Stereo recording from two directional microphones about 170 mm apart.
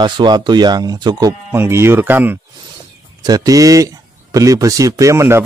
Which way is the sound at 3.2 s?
20° right (ahead or behind).